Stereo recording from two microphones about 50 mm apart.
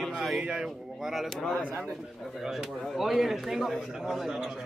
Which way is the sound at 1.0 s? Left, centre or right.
Centre.